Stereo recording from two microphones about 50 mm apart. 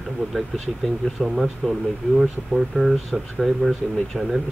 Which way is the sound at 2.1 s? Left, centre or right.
Centre.